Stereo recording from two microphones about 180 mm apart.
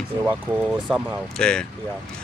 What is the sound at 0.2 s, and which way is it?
Speech, 10° right (ahead or behind).